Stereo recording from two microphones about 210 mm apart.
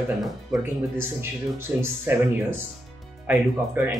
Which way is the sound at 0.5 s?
10° right (ahead or behind).